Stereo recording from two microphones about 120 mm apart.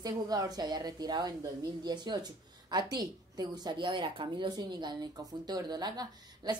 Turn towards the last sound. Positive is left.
turn(degrees=-35)  # may be behind; listen again after turning